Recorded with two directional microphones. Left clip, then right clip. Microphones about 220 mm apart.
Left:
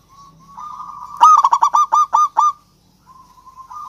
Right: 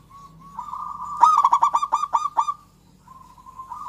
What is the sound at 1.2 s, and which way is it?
Goose, 15° left (ahead or behind).